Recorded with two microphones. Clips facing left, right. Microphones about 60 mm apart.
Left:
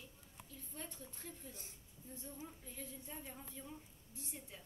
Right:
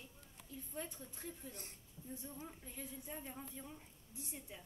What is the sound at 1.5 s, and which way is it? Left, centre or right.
Speech, right.